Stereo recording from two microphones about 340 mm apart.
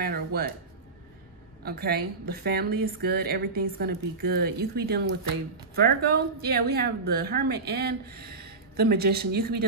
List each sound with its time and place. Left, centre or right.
0.0 s a woman's voice: right
1.6 s a woman's voice: right